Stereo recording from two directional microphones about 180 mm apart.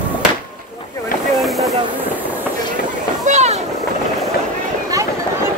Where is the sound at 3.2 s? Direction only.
40° right (ahead or behind).